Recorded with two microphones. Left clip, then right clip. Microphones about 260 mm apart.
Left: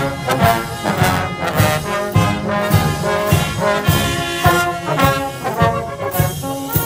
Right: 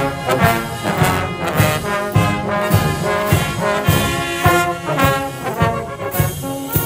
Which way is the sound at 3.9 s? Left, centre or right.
Centre.